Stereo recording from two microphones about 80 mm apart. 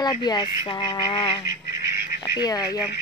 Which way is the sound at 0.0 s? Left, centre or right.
Left.